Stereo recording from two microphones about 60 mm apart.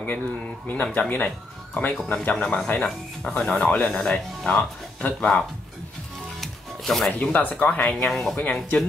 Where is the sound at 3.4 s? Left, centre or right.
Left.